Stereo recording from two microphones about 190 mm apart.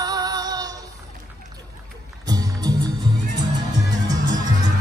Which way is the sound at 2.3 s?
20° right (ahead or behind).